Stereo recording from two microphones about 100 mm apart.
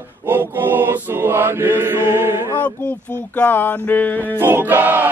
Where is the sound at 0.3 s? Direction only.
20° right (ahead or behind).